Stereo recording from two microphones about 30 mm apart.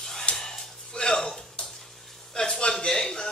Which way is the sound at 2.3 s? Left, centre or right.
Centre.